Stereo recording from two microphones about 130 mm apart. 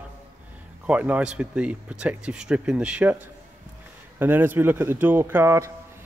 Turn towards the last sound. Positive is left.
turn(degrees=-20)  # may be behind; listen again after turning